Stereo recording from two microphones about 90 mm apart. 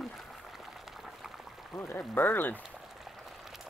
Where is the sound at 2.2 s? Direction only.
20° left (ahead or behind).